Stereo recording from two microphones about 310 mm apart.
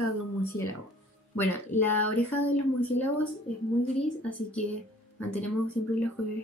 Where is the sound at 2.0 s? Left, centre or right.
Left.